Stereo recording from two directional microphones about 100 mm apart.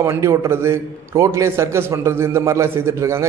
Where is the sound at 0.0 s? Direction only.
30° right (ahead or behind).